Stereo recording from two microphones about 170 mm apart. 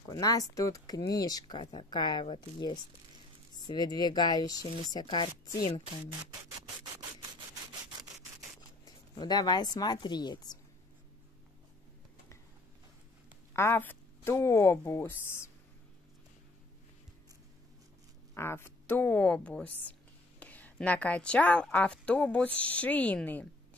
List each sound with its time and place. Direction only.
0.1 s speech: 20° left (ahead or behind)
8.5 s speech: 25° left (ahead or behind)
13.5 s speech: 15° left (ahead or behind)
18.3 s a woman's voice: 15° left (ahead or behind)